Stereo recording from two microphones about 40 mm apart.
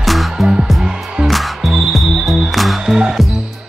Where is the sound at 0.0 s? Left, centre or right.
Centre.